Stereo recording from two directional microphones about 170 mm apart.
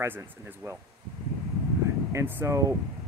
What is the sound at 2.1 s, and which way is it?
Speech, 15° right (ahead or behind).